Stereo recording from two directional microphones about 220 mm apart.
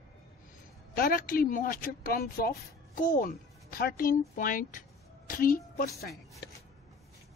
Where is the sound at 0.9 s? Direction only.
40° left (ahead or behind).